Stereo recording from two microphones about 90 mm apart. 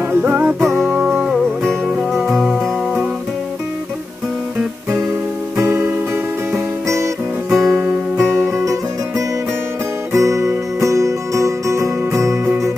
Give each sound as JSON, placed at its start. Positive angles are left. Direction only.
{"t": 0.1, "sound": "music", "side_deg": -25}
{"t": 1.9, "sound": "music", "side_deg": -5}
{"t": 5.6, "sound": "music", "side_deg": -25}
{"t": 7.4, "sound": "guitar", "side_deg": 0}
{"t": 7.7, "sound": "music", "side_deg": -30}
{"t": 10.1, "sound": "music", "side_deg": -35}